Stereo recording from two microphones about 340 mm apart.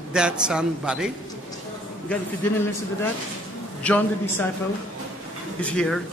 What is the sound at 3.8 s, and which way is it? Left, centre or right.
Speech, centre.